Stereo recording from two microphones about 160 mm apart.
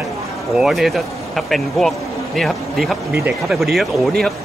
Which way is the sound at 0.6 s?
Centre (ahead or behind).